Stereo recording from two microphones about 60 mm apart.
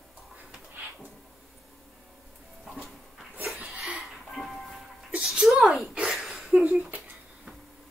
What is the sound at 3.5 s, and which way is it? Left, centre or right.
Music, centre.